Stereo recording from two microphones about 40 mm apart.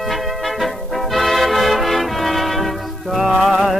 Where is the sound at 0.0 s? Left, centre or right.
Centre.